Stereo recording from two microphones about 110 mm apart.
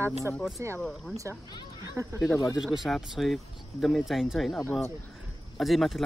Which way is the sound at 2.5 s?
Centre (ahead or behind).